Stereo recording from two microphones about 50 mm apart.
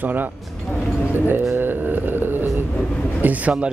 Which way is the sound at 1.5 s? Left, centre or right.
Right.